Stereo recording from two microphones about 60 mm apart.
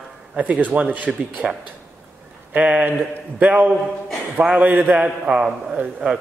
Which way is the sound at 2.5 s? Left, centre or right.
Right.